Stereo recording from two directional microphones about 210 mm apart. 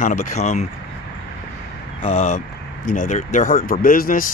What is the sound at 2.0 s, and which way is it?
Speech, 35° left (ahead or behind).